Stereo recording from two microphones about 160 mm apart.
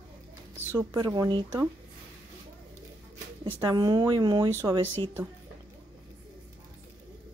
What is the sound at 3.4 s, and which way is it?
Speech, 20° right (ahead or behind).